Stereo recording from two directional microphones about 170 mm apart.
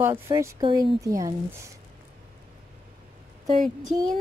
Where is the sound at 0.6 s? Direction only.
30° right (ahead or behind).